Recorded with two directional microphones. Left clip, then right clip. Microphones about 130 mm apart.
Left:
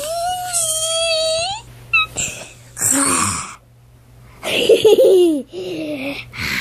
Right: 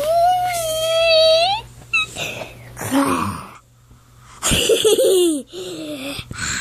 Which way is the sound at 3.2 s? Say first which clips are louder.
Left 5 dB; 40° left (ahead or behind).